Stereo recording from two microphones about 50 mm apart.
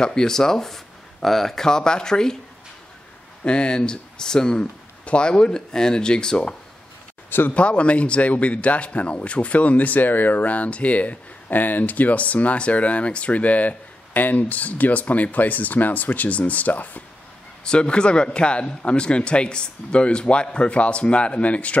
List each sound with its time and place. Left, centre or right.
0.0 s speech: centre
3.4 s speech: centre
7.2 s speech: left
7.5 s speech: left
17.6 s speech: centre